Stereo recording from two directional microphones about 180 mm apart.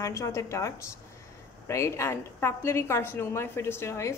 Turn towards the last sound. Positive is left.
turn(degrees=15)  # may be behind; listen again after turning